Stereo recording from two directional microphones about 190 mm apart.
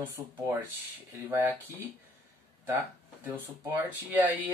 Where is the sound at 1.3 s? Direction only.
10° right (ahead or behind).